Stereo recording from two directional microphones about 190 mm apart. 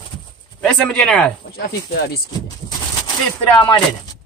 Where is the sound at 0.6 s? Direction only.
5° left (ahead or behind).